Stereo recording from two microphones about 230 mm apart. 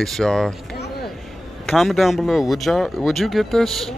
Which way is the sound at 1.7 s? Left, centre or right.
Centre.